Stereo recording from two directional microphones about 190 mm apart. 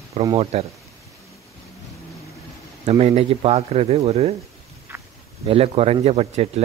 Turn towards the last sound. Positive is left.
turn(degrees=-35)  # may be behind; listen again after turning